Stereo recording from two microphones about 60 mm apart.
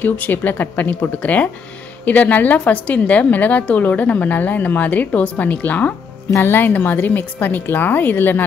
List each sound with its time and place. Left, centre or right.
0.0 s a woman's voice: left